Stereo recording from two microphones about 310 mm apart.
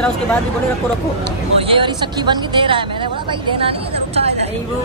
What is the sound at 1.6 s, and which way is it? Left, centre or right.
Speech, centre.